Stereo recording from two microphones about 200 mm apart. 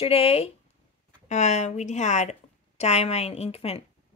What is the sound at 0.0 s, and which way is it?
A woman's voice, 30° left (ahead or behind).